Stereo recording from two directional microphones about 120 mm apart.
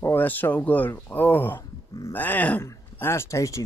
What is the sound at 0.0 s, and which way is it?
Speech, 15° left (ahead or behind).